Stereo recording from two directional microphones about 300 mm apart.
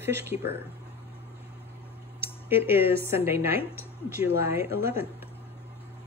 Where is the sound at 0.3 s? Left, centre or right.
Left.